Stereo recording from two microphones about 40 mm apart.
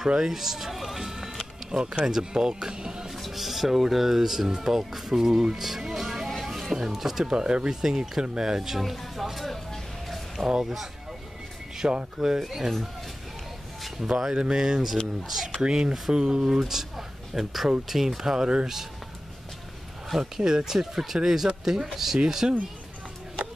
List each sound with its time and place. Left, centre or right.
0.2 s speech: centre
3.1 s speech: centre
5.9 s music: centre
6.4 s a sound: centre
6.7 s speech: centre
7.2 s speech: right; by 9.6 s centre
10.0 s a sound: centre
10.4 s speech: centre
11.7 s a sound: centre
12.2 s speech: centre
14.0 s speech: centre
14.6 s speech: centre
15.6 s speech: centre
20.2 s speech: centre